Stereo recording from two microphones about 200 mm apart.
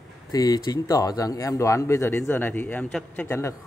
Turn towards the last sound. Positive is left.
turn(degrees=15)  # may be behind; listen again after turning